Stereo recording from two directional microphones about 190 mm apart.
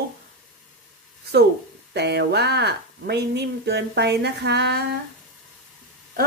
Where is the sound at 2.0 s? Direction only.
60° right (ahead or behind).